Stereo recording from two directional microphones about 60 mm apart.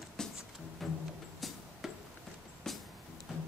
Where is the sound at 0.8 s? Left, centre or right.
Centre.